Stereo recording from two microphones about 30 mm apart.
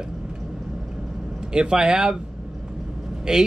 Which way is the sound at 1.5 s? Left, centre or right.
Right.